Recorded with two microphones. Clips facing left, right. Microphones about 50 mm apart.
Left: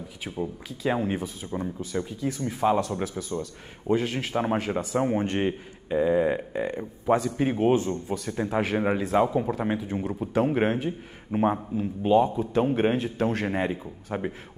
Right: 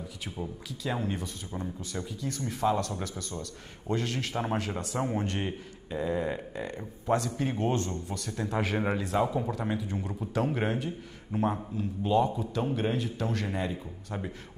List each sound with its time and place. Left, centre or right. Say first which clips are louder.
0.2 s a man's voice: left 7 dB; centre
2.1 s a man's voice: left 5 dB; centre
4.9 s a man's voice: left 6 dB; left
12.5 s speech: left 8 dB; left